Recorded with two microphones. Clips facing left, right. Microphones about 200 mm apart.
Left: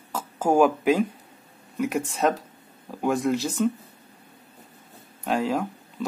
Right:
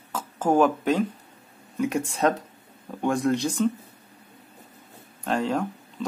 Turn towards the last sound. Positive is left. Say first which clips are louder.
# even
turn(degrees=5)  # may be behind; listen again after turning